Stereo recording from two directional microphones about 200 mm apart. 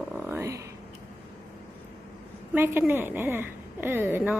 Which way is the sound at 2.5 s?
10° right (ahead or behind).